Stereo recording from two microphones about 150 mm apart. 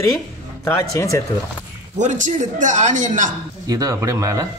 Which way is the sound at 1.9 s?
55° right (ahead or behind).